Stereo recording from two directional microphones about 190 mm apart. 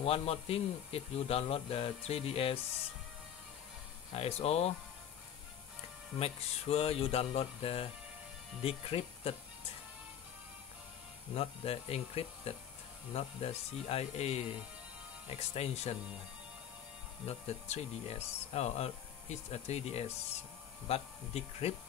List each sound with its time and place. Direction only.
0.0 s speech: 30° left (ahead or behind)
4.1 s speech: 30° left (ahead or behind)
6.1 s speech: 30° left (ahead or behind)
11.3 s speech: 30° left (ahead or behind)
17.3 s speech: 35° left (ahead or behind)